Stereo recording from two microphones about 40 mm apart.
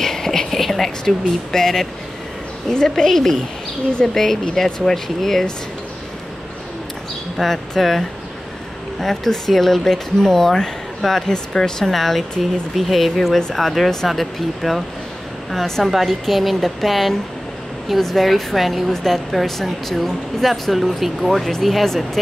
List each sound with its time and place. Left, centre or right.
0.0 s a woman's voice: centre
3.1 s speech: centre
7.3 s speech: centre
9.0 s speech: centre
11.9 s a woman's voice: centre
21.8 s speech: centre